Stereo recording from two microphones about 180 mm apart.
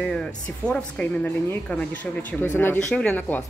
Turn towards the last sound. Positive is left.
turn(degrees=10)  # may be behind; listen again after turning